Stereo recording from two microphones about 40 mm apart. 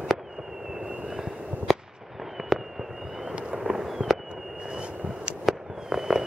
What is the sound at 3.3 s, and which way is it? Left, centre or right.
Fireworks, right.